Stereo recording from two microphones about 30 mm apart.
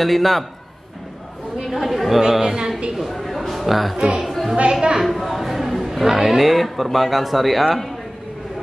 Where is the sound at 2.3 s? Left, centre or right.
Centre.